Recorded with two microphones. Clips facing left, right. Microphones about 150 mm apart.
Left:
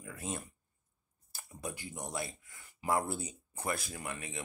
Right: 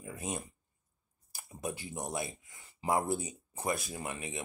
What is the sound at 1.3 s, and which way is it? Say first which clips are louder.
Speech: right 4 dB; 20° right (ahead or behind).